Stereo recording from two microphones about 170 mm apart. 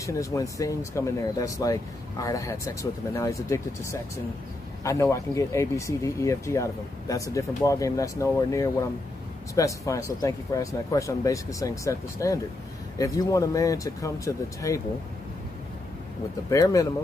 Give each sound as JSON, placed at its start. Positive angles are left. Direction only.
{"t": 0.0, "sound": "speech", "side_deg": 20}
{"t": 16.4, "sound": "speech", "side_deg": 20}